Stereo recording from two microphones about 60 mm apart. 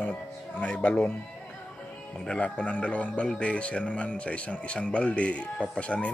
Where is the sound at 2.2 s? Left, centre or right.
Centre.